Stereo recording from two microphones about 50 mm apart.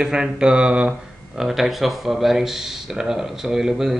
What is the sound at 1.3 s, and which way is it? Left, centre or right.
Speech, centre.